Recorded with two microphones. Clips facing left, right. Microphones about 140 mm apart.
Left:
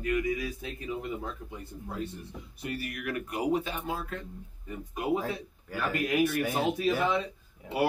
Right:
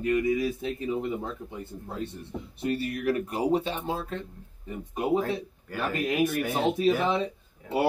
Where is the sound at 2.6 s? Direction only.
25° right (ahead or behind).